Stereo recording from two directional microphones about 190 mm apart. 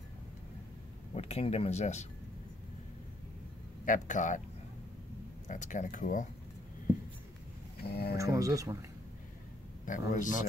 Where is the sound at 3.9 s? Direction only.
40° left (ahead or behind).